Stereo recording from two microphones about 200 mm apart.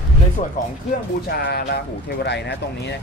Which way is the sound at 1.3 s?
50° left (ahead or behind).